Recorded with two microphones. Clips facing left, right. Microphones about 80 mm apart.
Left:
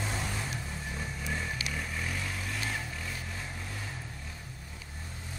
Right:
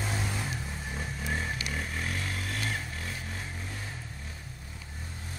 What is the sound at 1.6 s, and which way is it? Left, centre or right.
Vehicle, right.